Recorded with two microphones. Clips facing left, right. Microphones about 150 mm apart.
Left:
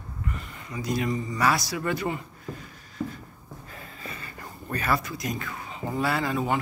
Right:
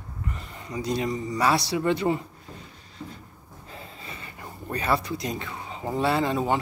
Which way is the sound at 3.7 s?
25° right (ahead or behind).